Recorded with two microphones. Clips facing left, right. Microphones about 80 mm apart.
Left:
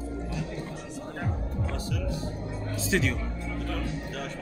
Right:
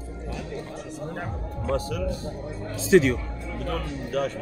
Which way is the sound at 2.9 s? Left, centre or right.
Right.